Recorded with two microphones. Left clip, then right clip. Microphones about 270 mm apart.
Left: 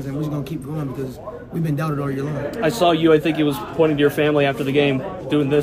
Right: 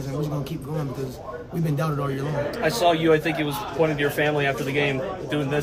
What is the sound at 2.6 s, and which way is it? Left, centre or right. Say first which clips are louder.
A man's voice: left 4 dB; left.